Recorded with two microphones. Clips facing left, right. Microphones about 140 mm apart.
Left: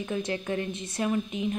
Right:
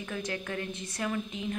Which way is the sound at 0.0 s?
25° left (ahead or behind).